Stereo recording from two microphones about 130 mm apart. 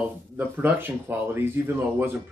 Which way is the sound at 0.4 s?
15° right (ahead or behind).